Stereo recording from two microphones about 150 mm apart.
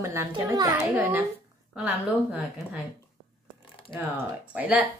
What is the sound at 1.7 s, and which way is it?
Speech, 5° right (ahead or behind).